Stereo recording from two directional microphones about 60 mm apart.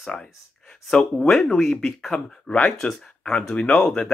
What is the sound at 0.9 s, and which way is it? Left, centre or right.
Speech, centre.